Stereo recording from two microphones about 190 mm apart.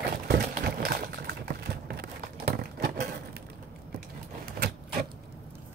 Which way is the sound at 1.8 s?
55° right (ahead or behind).